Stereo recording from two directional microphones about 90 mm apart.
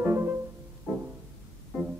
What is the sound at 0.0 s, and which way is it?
Music, 30° right (ahead or behind).